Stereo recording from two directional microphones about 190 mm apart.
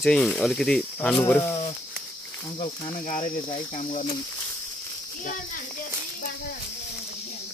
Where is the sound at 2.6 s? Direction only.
40° left (ahead or behind).